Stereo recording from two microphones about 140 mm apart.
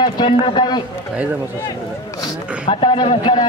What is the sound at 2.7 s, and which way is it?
Speech, 35° left (ahead or behind).